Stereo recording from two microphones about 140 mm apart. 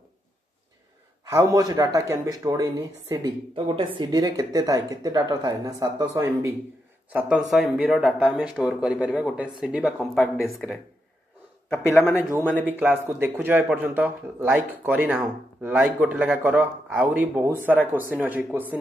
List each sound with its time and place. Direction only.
1.3 s speech: 25° right (ahead or behind)
3.3 s speech: 40° right (ahead or behind)
7.1 s speech: 10° right (ahead or behind)
11.7 s a man's voice: 15° left (ahead or behind)
12.6 s speech: 10° right (ahead or behind)